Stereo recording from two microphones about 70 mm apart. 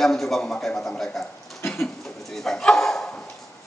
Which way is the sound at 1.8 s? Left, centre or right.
Centre.